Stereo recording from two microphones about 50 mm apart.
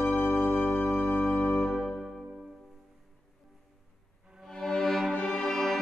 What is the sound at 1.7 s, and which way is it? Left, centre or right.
Music, centre.